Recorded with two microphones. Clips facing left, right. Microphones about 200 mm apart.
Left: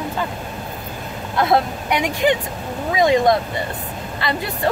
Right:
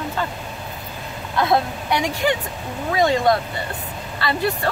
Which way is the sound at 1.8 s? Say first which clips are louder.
Left 3 dB; 20° left (ahead or behind).